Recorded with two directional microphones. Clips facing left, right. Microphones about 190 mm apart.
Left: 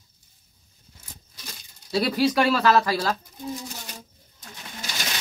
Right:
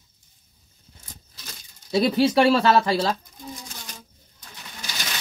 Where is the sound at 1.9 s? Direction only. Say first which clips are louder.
Right 3 dB; 20° right (ahead or behind).